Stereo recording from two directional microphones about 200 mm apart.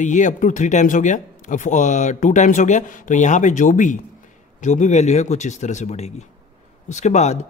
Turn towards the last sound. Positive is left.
turn(degrees=35)  # may be behind; listen again after turning